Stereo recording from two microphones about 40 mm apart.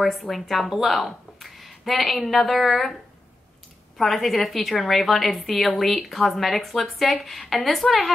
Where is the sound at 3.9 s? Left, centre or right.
Centre.